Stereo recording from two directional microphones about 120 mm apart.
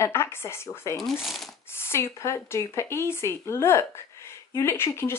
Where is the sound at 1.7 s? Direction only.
20° left (ahead or behind).